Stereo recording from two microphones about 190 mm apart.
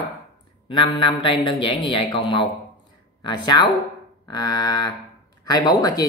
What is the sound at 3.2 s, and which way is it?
Speech, 25° left (ahead or behind).